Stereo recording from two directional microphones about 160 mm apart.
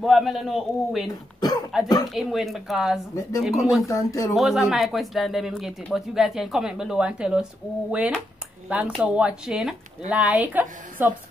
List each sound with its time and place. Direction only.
0.0 s speech: centre (ahead or behind)
3.2 s speech: 20° left (ahead or behind)
3.4 s speech: centre (ahead or behind)
3.8 s speech: 20° left (ahead or behind)
4.3 s speech: centre (ahead or behind)
8.6 s speech: 10° right (ahead or behind)